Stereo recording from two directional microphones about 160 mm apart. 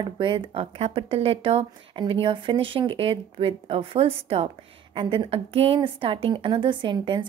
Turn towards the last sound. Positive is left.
turn(degrees=-30)  # may be behind; listen again after turning